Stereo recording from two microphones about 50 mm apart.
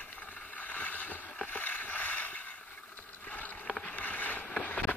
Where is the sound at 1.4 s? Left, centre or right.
Left.